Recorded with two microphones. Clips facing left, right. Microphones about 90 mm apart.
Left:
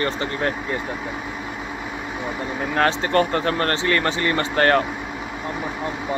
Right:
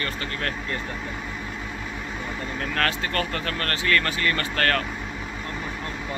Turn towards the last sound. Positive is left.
turn(degrees=25)  # may be behind; listen again after turning